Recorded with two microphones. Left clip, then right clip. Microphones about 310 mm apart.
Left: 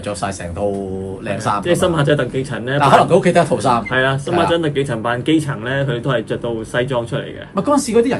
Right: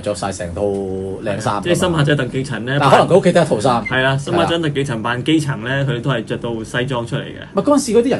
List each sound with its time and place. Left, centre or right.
1.7 s speech: centre
2.8 s speech: left
3.9 s speech: centre
7.5 s speech: left